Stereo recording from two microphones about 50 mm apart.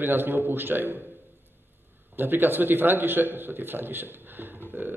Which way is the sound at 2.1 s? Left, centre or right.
Right.